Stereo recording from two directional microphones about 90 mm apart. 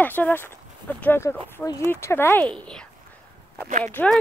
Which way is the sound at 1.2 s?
40° left (ahead or behind).